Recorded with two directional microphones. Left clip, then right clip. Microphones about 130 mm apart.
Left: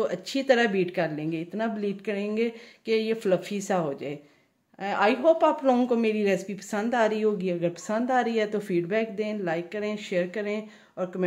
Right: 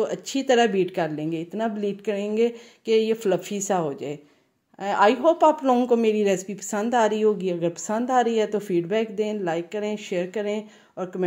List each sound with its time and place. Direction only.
0.0 s a woman's voice: 25° right (ahead or behind)